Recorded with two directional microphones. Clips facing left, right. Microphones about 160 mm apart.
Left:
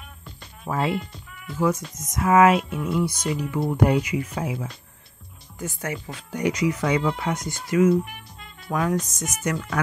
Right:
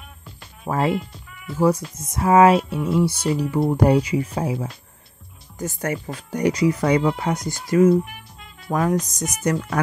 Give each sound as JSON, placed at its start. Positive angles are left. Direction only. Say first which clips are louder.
{"t": 0.7, "sound": "speech", "louder": "right 3 dB", "side_deg": -45}
{"t": 0.9, "sound": "speech", "louder": "right 3 dB", "side_deg": -5}
{"t": 1.6, "sound": "speech", "louder": "right 4 dB", "side_deg": -35}
{"t": 8.0, "sound": "music", "louder": "right 2 dB", "side_deg": 0}
{"t": 8.7, "sound": "speech", "louder": "right 3 dB", "side_deg": -35}